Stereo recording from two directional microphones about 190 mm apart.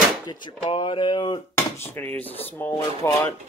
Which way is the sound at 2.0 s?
10° left (ahead or behind).